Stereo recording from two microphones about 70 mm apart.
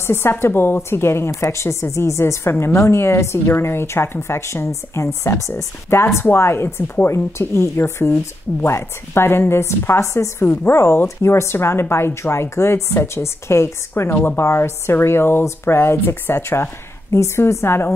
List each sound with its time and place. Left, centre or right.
0.0 s a woman's voice: left
10.4 s a woman's voice: left